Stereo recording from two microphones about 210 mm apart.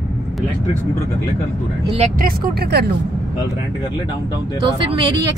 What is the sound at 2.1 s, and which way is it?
Speech, 45° right (ahead or behind).